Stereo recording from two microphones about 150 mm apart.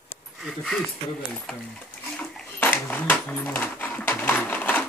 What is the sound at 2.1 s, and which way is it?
Dog, 15° left (ahead or behind).